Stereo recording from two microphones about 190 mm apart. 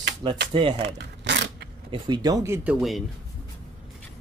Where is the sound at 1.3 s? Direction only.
65° right (ahead or behind).